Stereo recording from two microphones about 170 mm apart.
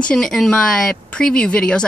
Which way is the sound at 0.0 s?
5° left (ahead or behind).